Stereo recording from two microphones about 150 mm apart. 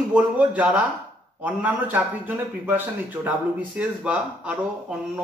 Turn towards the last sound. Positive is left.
turn(degrees=-5)  # may be behind; listen again after turning